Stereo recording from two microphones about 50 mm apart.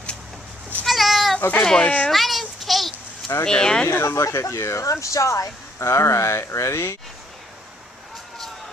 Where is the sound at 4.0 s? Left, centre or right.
Left.